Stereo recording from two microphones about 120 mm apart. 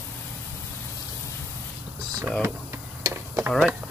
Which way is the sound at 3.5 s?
Centre (ahead or behind).